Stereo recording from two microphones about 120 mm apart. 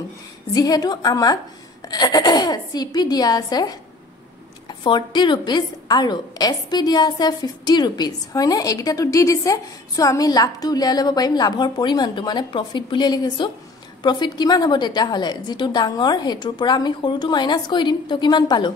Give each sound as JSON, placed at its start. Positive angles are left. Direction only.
{"t": 0.6, "sound": "a woman's voice", "side_deg": 30}